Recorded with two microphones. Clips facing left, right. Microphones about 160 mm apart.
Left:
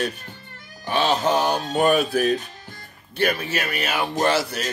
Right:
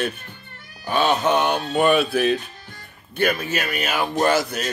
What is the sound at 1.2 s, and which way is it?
Speech, 35° left (ahead or behind).